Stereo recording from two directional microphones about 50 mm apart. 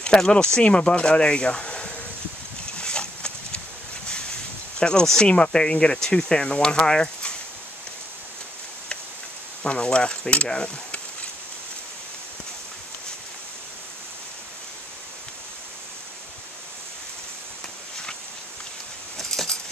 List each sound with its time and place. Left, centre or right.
0.0 s speech: centre
2.8 s a sound: centre
4.7 s speech: centre
9.6 s speech: left
19.1 s keys jangling: centre